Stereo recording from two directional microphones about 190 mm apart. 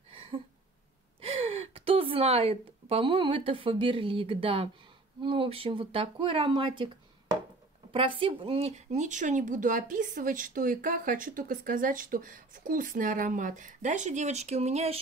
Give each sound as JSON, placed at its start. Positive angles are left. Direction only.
{"t": 0.1, "sound": "a sound", "side_deg": -25}
{"t": 1.2, "sound": "a woman's voice", "side_deg": -30}
{"t": 7.9, "sound": "speech", "side_deg": -30}